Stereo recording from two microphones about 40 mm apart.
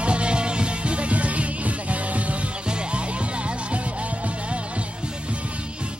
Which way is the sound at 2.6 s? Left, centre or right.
Right.